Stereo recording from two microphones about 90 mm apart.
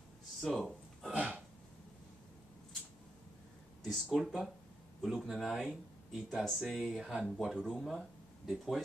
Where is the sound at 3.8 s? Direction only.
5° right (ahead or behind).